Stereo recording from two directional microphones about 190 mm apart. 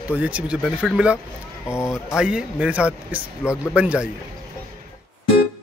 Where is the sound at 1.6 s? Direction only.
15° left (ahead or behind).